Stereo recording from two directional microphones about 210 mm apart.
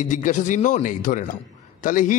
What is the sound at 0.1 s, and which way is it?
Speech, 35° left (ahead or behind).